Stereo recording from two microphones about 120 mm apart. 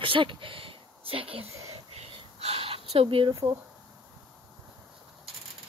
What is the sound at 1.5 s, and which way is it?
Whispering, 30° right (ahead or behind).